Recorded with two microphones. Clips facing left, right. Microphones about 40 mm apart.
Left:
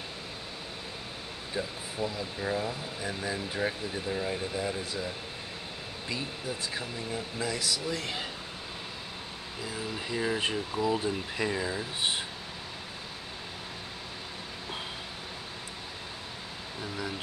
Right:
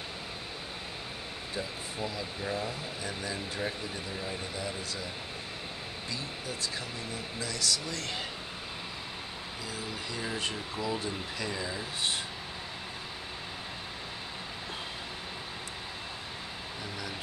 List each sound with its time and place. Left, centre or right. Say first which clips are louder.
1.5 s speech: left 3 dB; centre
7.3 s speech: even; centre
9.7 s speech: left 4 dB; centre